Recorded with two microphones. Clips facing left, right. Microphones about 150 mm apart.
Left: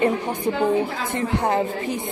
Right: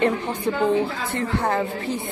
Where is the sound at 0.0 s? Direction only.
15° left (ahead or behind).